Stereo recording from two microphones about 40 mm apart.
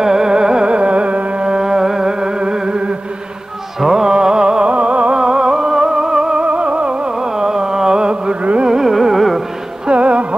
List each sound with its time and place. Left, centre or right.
0.0 s music: centre
5.1 s music: centre
6.4 s music: right
7.2 s music: centre
8.6 s carnatic music: centre
9.8 s music: right